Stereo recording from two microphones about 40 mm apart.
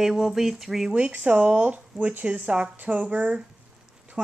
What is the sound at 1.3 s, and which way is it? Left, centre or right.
Speech, right.